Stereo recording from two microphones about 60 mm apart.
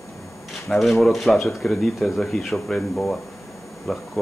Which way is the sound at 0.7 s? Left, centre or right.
Centre.